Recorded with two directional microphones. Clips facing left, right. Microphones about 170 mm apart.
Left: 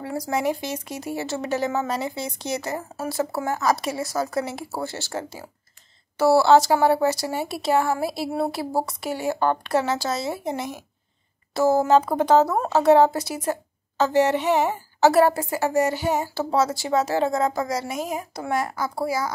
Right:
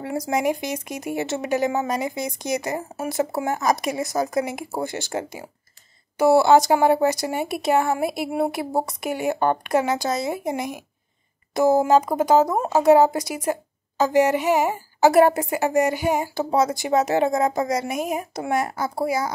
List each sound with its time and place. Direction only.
0.0 s speech: 20° right (ahead or behind)